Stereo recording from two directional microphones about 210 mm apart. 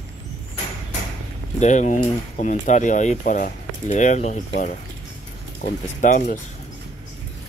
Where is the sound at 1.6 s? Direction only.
35° left (ahead or behind).